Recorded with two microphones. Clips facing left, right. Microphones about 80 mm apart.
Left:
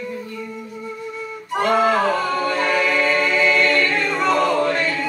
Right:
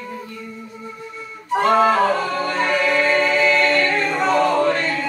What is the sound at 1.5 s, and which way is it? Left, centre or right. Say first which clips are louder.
Music: right 2 dB; right.